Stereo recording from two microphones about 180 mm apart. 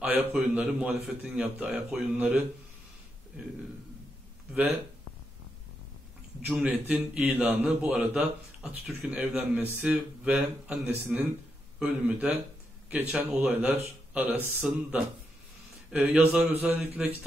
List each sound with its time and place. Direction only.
0.0 s a man's voice: 5° right (ahead or behind)
6.4 s a man's voice: 5° right (ahead or behind)